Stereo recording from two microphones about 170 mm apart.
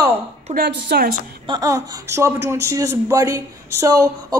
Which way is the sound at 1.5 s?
20° right (ahead or behind).